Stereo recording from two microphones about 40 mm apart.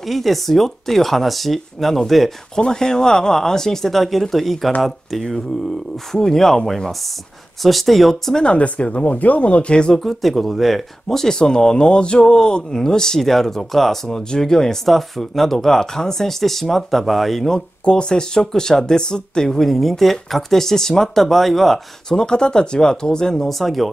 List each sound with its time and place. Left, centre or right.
0.0 s speech: centre
2.5 s speech: centre
6.1 s speech: centre
8.4 s speech: left
9.9 s speech: centre
17.8 s speech: left
19.5 s speech: centre
22.1 s speech: left
23.6 s speech: centre